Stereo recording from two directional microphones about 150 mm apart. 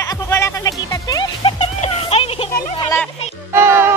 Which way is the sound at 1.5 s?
45° left (ahead or behind).